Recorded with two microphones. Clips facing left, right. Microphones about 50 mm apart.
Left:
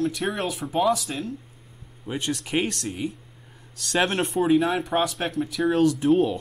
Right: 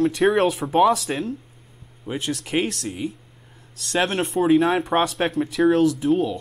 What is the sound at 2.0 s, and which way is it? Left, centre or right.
Speech, centre.